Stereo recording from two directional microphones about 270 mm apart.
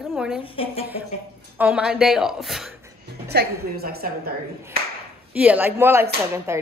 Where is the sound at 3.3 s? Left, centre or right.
Right.